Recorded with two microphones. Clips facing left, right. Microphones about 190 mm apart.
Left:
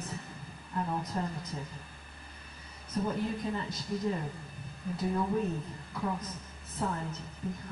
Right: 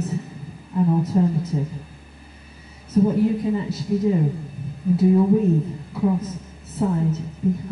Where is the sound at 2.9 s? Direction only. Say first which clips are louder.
Right 14 dB; 5° right (ahead or behind).